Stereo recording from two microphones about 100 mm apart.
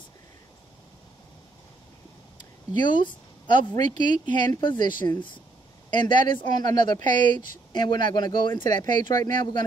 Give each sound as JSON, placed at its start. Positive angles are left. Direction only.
{"t": 2.8, "sound": "speech", "side_deg": 50}